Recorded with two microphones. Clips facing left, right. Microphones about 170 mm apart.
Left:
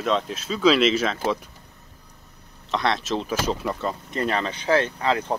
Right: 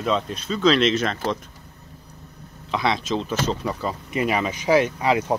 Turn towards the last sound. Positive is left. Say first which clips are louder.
# right 3 dB
turn(degrees=-10)  # may be behind; listen again after turning